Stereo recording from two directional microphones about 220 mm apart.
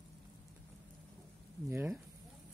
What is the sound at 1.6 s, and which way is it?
Speech, 10° right (ahead or behind).